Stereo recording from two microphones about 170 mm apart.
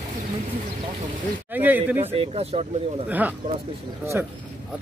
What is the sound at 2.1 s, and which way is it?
Speech, 40° right (ahead or behind).